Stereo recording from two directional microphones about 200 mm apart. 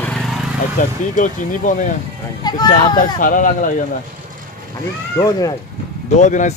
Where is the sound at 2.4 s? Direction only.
20° left (ahead or behind).